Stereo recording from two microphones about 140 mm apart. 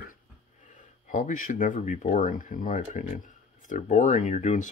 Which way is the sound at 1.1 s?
65° left (ahead or behind).